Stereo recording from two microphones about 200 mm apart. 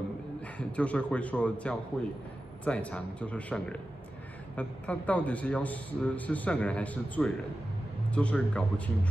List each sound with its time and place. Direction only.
0.6 s a man's voice: 5° left (ahead or behind)